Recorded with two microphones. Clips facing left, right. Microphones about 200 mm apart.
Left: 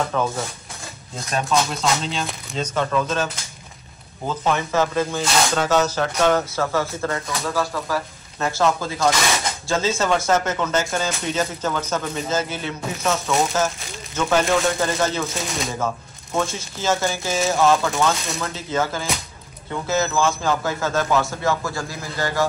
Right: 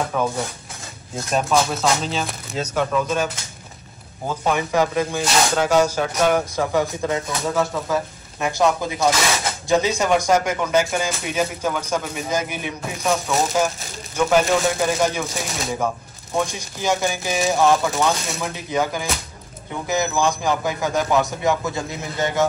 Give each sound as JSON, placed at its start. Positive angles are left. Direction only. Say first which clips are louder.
{"t": 0.1, "sound": "speech", "louder": "right 1 dB", "side_deg": -10}
{"t": 1.3, "sound": "speech", "louder": "right 2 dB", "side_deg": -5}
{"t": 4.3, "sound": "speech", "louder": "right 1 dB", "side_deg": -15}
{"t": 14.1, "sound": "speech", "louder": "right 2 dB", "side_deg": -10}
{"t": 16.3, "sound": "speech", "louder": "even", "side_deg": -15}